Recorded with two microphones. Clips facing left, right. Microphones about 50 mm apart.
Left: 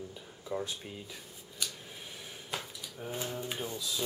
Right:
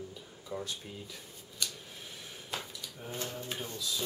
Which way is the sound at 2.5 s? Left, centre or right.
Centre.